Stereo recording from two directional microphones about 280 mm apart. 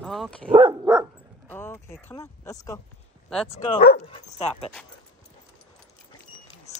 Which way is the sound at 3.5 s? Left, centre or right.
Left.